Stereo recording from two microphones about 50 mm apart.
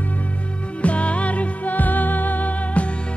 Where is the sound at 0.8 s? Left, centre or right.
Left.